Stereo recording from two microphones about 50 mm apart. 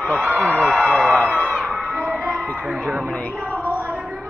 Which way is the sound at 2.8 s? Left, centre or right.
Right.